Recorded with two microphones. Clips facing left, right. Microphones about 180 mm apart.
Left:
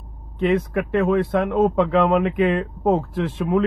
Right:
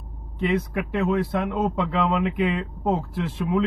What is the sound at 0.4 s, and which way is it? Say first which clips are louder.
A man's voice: left 4 dB; 55° left (ahead or behind).